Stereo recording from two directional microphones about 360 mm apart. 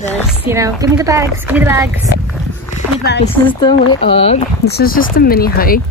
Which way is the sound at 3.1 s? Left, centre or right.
Left.